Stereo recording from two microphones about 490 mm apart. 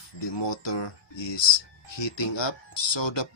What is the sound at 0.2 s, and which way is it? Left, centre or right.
Speech, left.